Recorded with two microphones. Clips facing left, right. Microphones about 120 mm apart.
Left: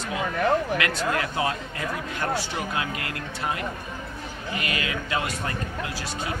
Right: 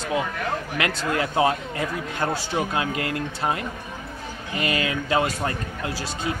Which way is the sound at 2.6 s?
30° right (ahead or behind).